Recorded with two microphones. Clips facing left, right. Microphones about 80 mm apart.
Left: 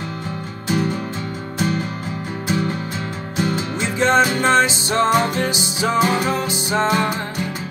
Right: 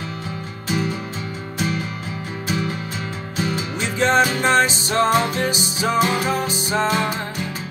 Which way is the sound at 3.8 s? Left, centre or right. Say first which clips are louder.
Left 1 dB; left.